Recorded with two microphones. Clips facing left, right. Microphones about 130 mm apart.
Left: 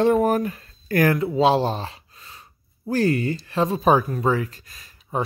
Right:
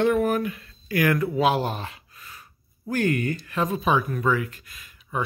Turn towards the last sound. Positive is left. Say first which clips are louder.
# left 4 dB
turn(degrees=35)  # may be behind; listen again after turning